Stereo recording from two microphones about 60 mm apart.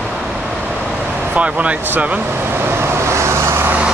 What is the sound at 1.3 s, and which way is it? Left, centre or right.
Speech, right.